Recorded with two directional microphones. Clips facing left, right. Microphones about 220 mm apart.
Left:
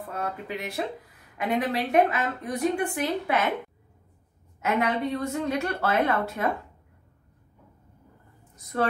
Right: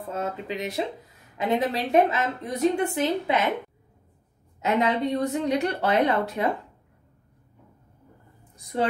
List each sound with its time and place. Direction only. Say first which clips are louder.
0.1 s a woman's voice: right 3 dB; 20° right (ahead or behind)
4.6 s a woman's voice: right 2 dB; 20° right (ahead or behind)
8.7 s a woman's voice: right 1 dB; 20° right (ahead or behind)